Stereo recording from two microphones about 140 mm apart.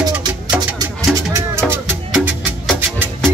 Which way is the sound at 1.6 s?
10° left (ahead or behind).